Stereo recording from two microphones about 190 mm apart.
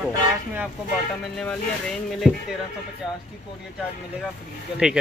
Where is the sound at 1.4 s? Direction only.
5° left (ahead or behind).